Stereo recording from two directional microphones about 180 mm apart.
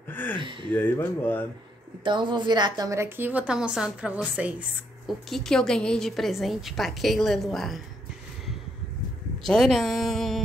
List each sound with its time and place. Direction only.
0.1 s gasp: 10° left (ahead or behind)
0.4 s speech: 25° right (ahead or behind)
0.7 s speech: 10° left (ahead or behind)
2.0 s a woman's voice: 25° right (ahead or behind); by 7.8 s centre (ahead or behind)
9.4 s a woman's voice: centre (ahead or behind)